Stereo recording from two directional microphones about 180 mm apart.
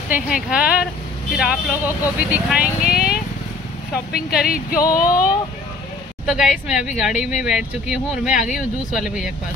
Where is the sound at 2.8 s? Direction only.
55° left (ahead or behind).